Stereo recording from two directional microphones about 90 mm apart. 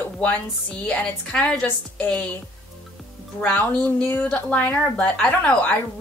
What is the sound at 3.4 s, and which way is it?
Speech, 15° left (ahead or behind).